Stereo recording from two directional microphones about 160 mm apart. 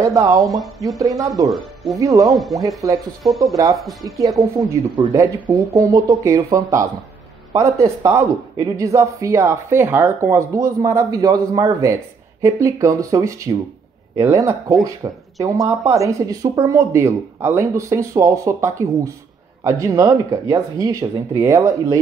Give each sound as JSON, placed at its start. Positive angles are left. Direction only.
{"t": 0.0, "sound": "speech", "side_deg": -20}
{"t": 0.5, "sound": "speech", "side_deg": 0}
{"t": 0.9, "sound": "speech", "side_deg": -20}
{"t": 2.2, "sound": "speech", "side_deg": 0}
{"t": 2.8, "sound": "speech", "side_deg": -20}